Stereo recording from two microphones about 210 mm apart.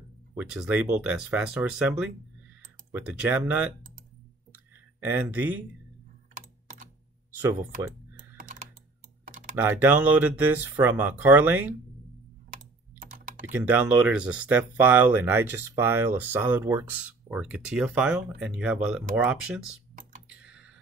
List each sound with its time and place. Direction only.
0.4 s speech: 5° right (ahead or behind)
5.1 s speech: 10° right (ahead or behind)
6.3 s typing: 40° right (ahead or behind)
8.4 s typing: 40° right (ahead or behind)
9.2 s computer keyboard: 40° right (ahead or behind)
9.6 s speech: 10° right (ahead or behind)
12.5 s computer keyboard: 40° right (ahead or behind)
13.5 s speech: 10° right (ahead or behind)
20.2 s computer keyboard: 5° right (ahead or behind)